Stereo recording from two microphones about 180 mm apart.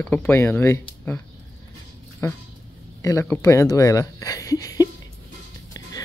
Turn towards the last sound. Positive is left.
turn(degrees=20)  # may be behind; listen again after turning